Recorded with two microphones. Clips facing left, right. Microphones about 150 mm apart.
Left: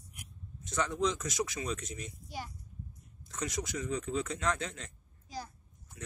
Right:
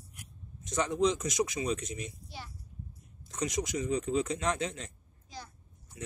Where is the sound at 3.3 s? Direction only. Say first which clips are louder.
Right 4 dB; 20° right (ahead or behind).